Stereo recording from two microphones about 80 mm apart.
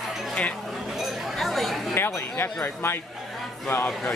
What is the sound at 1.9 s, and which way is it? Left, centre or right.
Speech, left.